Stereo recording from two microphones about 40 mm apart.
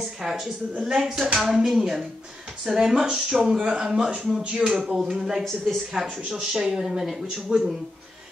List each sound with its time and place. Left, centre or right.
0.2 s a man's voice: centre
5.4 s speech: centre
6.3 s a man's voice: centre